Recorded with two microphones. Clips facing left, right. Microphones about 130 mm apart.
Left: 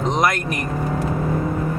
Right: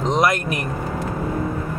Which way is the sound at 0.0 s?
Centre (ahead or behind).